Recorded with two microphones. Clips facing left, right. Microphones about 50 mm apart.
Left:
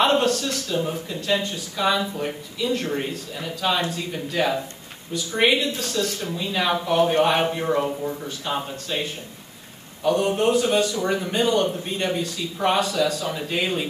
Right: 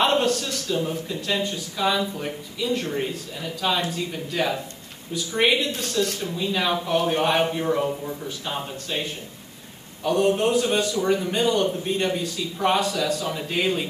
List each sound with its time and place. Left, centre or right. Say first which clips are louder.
0.0 s a sound: left 1 dB; centre
0.7 s a man's voice: even; centre
10.0 s a man's voice: even; centre